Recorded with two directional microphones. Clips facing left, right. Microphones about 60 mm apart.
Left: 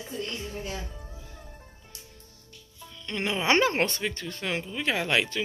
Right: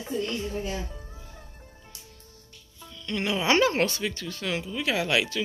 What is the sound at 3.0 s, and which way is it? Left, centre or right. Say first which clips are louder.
Speech: right 1 dB; left.